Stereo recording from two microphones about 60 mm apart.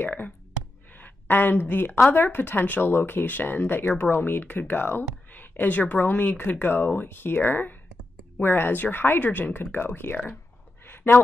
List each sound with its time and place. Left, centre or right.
0.0 s speech: left
0.9 s a sound: left
2.0 s speech: left